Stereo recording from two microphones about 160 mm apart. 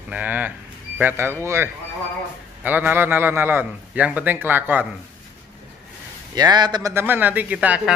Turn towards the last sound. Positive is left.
turn(degrees=-5)  # may be behind; listen again after turning